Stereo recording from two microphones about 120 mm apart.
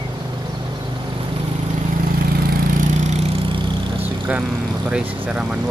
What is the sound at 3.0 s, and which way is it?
Vehicle, 60° right (ahead or behind).